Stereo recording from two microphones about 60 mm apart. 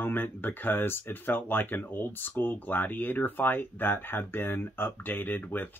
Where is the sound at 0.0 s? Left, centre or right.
Left.